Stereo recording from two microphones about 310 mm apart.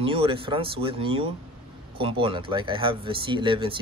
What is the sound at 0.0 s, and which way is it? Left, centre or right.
Speech, centre.